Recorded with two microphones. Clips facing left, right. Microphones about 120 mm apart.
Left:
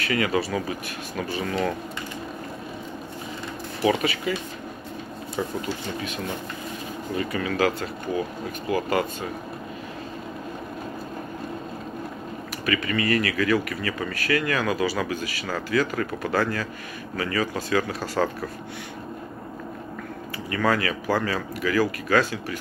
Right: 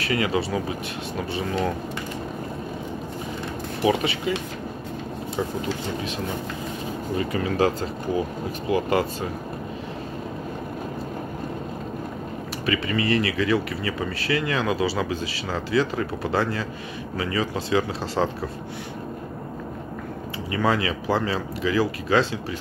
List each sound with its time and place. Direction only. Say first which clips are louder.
0.0 s speech: even; 25° right (ahead or behind)
4.0 s speech: right 1 dB; 30° right (ahead or behind)
7.2 s speech: right 2 dB; 25° right (ahead or behind)
12.6 s speech: right 1 dB; 25° right (ahead or behind)
20.5 s speech: even; 20° right (ahead or behind)